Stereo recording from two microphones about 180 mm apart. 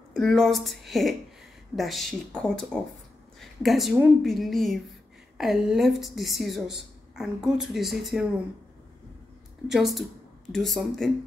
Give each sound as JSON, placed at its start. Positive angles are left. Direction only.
{"t": 0.1, "sound": "a woman's voice", "side_deg": 5}
{"t": 9.7, "sound": "a woman's voice", "side_deg": 0}